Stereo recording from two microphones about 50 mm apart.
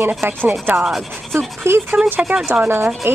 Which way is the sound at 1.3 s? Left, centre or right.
Right.